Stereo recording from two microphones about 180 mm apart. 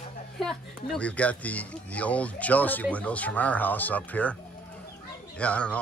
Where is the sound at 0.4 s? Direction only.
5° left (ahead or behind).